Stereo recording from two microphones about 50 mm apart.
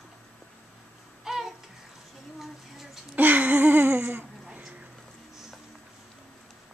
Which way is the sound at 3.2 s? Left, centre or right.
Right.